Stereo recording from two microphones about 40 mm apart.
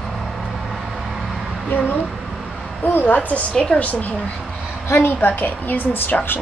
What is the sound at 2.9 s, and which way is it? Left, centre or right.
Speech, left.